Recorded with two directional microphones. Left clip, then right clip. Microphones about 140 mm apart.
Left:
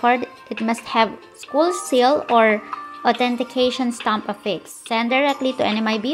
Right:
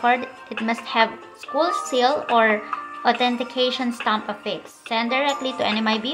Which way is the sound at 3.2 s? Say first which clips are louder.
Left 2 dB; 70° left (ahead or behind).